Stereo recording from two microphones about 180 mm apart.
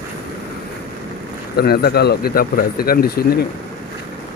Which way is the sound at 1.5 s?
60° left (ahead or behind).